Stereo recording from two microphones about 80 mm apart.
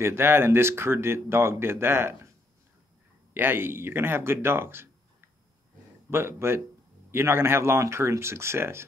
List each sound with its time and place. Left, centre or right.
0.0 s speech: right
3.3 s speech: right
6.0 s speech: right